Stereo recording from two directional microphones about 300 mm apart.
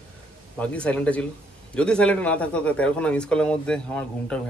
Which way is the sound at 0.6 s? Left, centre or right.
Centre.